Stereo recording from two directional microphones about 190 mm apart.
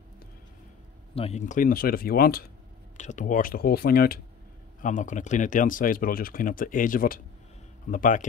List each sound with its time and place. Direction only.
1.1 s speech: 35° left (ahead or behind); by 2.4 s 50° left (ahead or behind)
3.0 s speech: 40° left (ahead or behind)
4.8 s speech: 40° left (ahead or behind)